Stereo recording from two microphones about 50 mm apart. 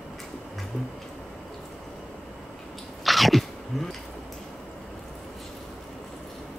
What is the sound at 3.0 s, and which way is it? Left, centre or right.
Sneeze, centre.